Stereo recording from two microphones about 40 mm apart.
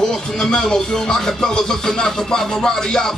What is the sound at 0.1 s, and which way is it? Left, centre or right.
Music, centre.